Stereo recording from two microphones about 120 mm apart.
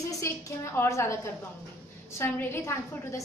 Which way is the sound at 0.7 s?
25° left (ahead or behind).